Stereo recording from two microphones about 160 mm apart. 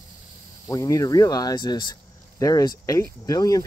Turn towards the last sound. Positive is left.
turn(degrees=20)  # may be behind; listen again after turning